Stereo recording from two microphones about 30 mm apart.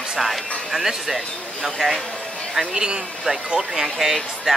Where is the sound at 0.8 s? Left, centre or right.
Centre.